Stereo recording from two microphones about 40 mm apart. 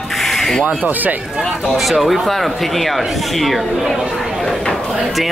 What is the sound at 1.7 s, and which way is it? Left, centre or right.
Speech, centre.